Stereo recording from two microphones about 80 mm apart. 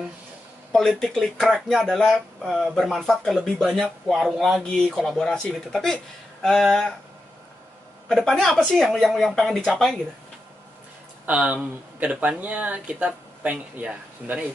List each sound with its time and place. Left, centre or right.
0.7 s speech: centre
4.6 s speech: centre
8.1 s speech: centre
11.2 s speech: centre